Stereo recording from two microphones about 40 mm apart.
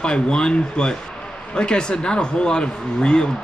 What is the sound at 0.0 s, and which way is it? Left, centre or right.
Speech, left.